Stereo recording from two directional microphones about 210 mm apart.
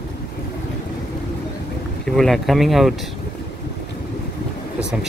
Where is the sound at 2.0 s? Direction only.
Centre (ahead or behind).